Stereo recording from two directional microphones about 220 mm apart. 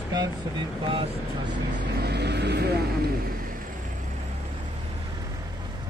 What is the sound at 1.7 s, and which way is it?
Vehicle, 45° right (ahead or behind).